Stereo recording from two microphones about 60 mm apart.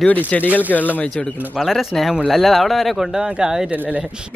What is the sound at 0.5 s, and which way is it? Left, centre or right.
Speech, right.